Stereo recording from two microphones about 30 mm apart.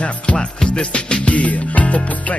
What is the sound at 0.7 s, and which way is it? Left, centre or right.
Speech, left.